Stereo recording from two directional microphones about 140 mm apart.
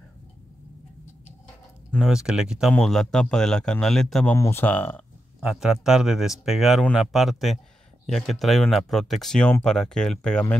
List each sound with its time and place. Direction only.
1.9 s speech: centre (ahead or behind)
4.4 s speech: 15° left (ahead or behind)
5.4 s speech: 5° right (ahead or behind)